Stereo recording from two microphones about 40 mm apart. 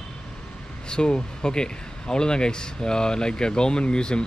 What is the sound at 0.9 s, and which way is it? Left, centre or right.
Speech, left.